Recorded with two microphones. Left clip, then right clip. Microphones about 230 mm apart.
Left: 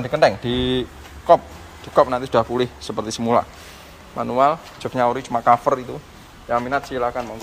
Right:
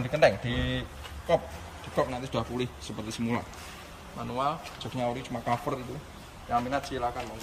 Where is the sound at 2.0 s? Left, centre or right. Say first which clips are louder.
Left 14 dB; left.